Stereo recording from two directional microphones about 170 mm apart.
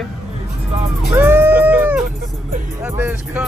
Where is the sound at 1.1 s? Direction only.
10° right (ahead or behind).